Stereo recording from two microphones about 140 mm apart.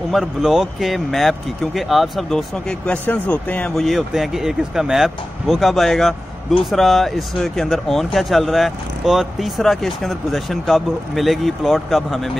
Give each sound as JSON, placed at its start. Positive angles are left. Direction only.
{"t": 0.1, "sound": "speech", "side_deg": 0}